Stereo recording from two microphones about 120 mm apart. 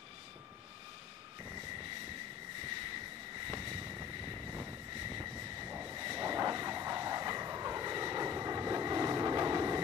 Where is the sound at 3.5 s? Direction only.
30° right (ahead or behind).